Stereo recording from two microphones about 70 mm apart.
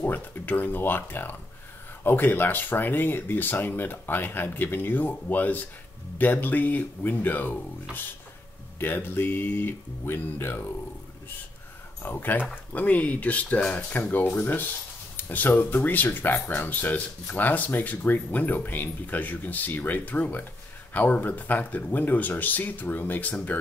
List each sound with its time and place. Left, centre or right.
0.0 s speech: left
8.7 s speech: left
12.0 s speech: left